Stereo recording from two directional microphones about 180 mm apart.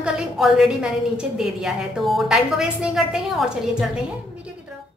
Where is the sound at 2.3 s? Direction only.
5° right (ahead or behind).